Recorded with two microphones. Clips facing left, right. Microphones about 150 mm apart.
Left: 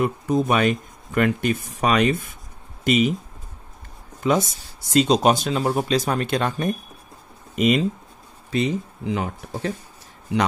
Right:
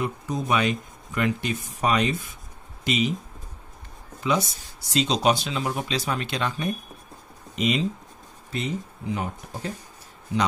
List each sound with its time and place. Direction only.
0.0 s speech: 55° left (ahead or behind)
1.8 s speech: 70° left (ahead or behind); by 3.1 s 50° left (ahead or behind)
4.2 s speech: 45° left (ahead or behind)
8.5 s speech: 90° left